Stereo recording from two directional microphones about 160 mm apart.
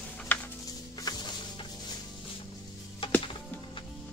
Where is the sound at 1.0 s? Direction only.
25° left (ahead or behind).